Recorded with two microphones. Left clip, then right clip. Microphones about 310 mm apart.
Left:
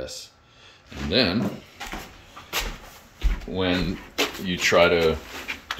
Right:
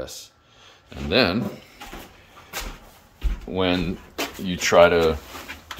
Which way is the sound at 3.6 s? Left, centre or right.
Centre.